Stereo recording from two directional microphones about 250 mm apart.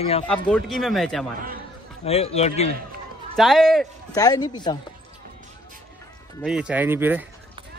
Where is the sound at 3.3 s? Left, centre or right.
Centre.